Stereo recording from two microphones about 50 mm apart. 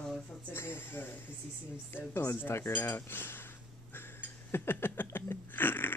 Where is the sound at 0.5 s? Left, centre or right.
Left.